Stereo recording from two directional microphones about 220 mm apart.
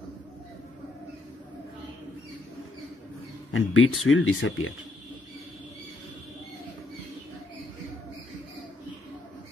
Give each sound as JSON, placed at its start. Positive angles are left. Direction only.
{"t": 3.5, "sound": "speech", "side_deg": 70}